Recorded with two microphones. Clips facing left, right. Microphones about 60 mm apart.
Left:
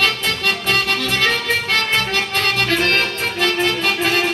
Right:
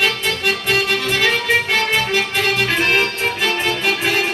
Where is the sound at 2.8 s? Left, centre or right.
Centre.